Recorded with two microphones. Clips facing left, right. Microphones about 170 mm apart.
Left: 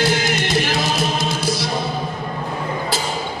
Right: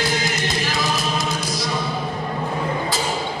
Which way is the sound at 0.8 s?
30° left (ahead or behind).